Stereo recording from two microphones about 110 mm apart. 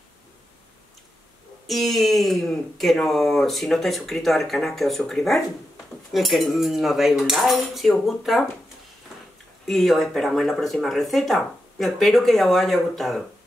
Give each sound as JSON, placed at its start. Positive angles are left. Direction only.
{"t": 1.7, "sound": "speech", "side_deg": 0}
{"t": 9.7, "sound": "speech", "side_deg": 0}